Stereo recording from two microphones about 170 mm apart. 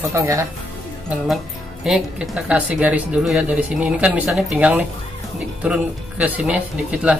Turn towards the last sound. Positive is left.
turn(degrees=-10)  # may be behind; listen again after turning